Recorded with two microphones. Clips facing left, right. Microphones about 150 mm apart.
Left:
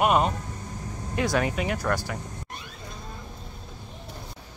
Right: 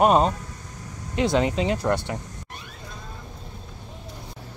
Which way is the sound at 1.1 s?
20° right (ahead or behind).